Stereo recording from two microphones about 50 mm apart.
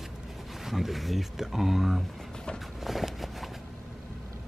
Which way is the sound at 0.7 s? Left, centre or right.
Centre.